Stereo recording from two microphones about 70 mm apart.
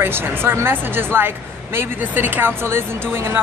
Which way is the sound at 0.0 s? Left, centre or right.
Right.